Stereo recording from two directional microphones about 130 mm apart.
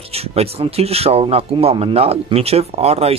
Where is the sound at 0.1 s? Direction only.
50° right (ahead or behind).